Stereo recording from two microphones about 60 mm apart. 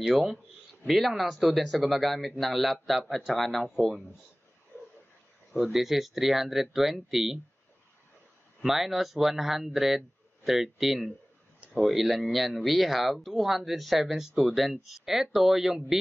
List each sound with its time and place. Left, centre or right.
0.0 s speech: centre
5.5 s speech: centre
8.6 s speech: centre